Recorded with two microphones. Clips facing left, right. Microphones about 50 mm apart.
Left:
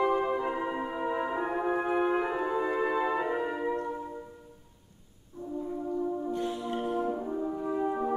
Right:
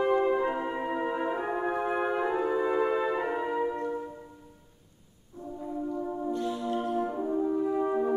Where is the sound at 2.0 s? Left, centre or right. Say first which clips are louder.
Right 1 dB; centre.